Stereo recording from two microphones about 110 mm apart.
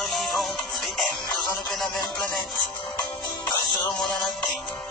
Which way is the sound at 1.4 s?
Centre (ahead or behind).